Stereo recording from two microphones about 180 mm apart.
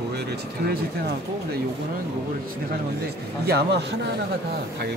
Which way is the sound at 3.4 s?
65° right (ahead or behind).